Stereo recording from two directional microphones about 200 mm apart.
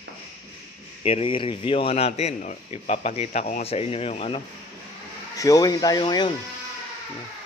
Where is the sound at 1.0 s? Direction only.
30° left (ahead or behind).